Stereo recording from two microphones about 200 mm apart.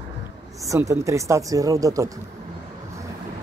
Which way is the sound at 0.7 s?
15° right (ahead or behind).